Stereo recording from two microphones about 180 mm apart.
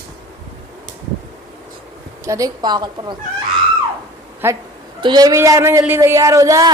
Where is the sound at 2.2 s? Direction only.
20° right (ahead or behind).